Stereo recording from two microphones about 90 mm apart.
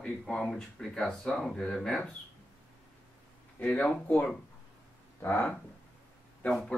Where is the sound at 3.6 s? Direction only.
10° left (ahead or behind).